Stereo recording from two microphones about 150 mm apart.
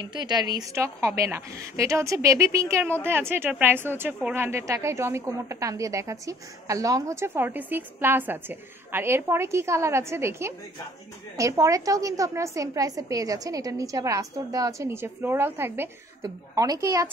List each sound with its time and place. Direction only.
0.0 s a woman's voice: 30° right (ahead or behind)